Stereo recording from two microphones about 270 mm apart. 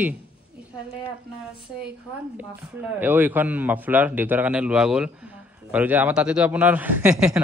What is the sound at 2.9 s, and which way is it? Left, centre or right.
A man's voice, centre.